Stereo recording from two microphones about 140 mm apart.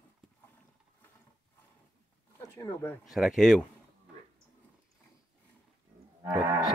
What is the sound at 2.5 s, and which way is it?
Speech, 20° left (ahead or behind).